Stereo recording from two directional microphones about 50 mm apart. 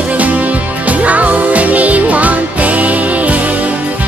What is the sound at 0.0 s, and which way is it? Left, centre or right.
Music, right.